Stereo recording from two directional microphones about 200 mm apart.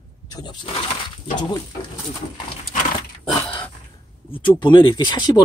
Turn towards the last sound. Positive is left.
turn(degrees=20)  # may be behind; listen again after turning